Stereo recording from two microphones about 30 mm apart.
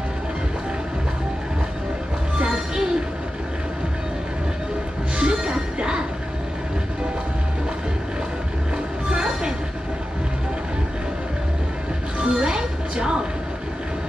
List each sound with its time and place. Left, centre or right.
2.3 s music: right
5.1 s music: right
9.1 s train: right
12.2 s music: right